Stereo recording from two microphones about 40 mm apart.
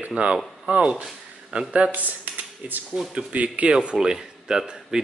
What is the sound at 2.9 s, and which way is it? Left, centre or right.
Speech, right.